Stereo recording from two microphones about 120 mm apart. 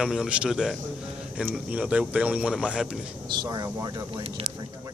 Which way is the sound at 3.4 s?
35° right (ahead or behind).